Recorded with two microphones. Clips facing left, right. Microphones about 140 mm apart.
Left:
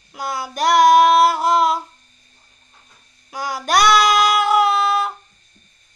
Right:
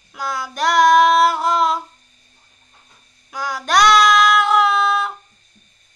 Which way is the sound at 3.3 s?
10° left (ahead or behind).